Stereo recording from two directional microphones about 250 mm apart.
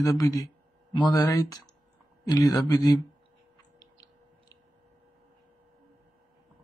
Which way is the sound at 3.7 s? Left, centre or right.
Centre.